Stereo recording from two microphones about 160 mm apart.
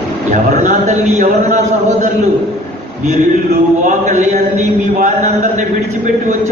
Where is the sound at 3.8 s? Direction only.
50° right (ahead or behind).